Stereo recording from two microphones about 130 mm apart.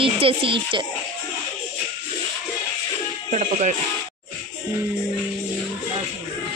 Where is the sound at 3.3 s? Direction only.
65° right (ahead or behind).